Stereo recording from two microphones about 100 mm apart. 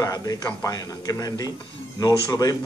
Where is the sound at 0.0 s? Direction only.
40° left (ahead or behind).